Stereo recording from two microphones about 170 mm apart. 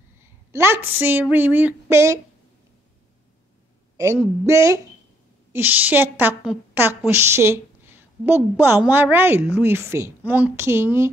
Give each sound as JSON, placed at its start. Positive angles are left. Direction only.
{"t": 0.5, "sound": "a woman's voice", "side_deg": -15}
{"t": 3.9, "sound": "a woman's voice", "side_deg": -15}